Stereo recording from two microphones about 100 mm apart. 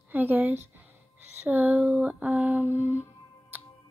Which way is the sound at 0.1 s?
20° right (ahead or behind).